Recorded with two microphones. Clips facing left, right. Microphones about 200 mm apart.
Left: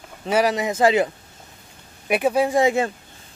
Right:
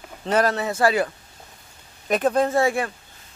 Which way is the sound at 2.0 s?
10° left (ahead or behind).